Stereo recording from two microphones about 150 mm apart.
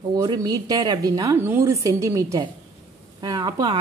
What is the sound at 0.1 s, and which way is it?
A woman's voice, 25° right (ahead or behind).